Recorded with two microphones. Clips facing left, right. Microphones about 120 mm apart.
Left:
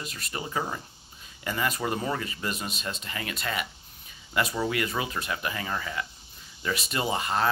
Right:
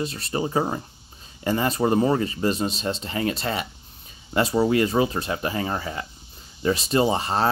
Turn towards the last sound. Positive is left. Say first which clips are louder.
# right 6 dB
turn(degrees=-30)  # may be behind; listen again after turning